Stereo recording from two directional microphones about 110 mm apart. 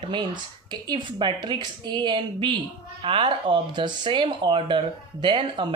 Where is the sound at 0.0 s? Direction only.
45° right (ahead or behind).